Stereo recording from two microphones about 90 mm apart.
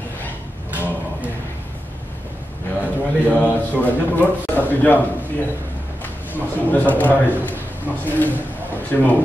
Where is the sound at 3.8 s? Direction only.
20° left (ahead or behind).